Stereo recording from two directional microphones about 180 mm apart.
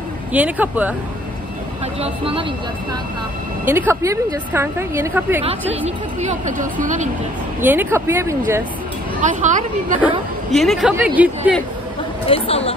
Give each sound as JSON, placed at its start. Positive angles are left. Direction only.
{"t": 0.3, "sound": "a woman's voice", "side_deg": -10}
{"t": 2.0, "sound": "speech", "side_deg": -30}
{"t": 3.6, "sound": "a woman's voice", "side_deg": -10}
{"t": 5.4, "sound": "a woman's voice", "side_deg": -35}
{"t": 7.6, "sound": "a woman's voice", "side_deg": -10}
{"t": 9.2, "sound": "speech", "side_deg": -45}
{"t": 10.5, "sound": "speech", "side_deg": 0}
{"t": 12.3, "sound": "speech", "side_deg": 30}